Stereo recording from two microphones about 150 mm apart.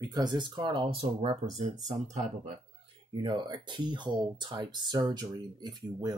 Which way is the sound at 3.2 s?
30° right (ahead or behind).